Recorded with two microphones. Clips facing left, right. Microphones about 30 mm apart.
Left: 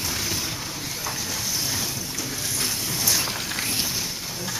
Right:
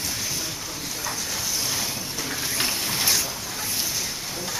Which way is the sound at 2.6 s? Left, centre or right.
Right.